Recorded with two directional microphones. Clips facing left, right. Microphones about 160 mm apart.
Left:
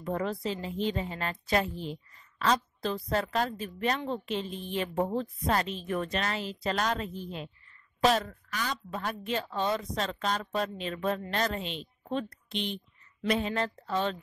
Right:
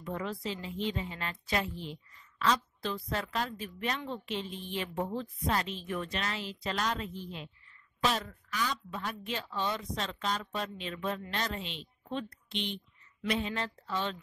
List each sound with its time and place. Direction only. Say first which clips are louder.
0.0 s a woman's voice: left 5 dB; 40° left (ahead or behind)